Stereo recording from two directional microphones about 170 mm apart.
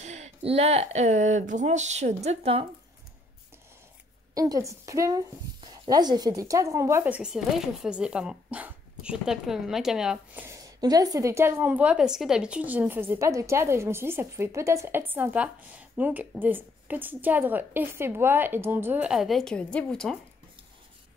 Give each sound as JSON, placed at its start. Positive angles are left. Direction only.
{"t": 0.0, "sound": "speech", "side_deg": -40}
{"t": 4.4, "sound": "speech", "side_deg": -20}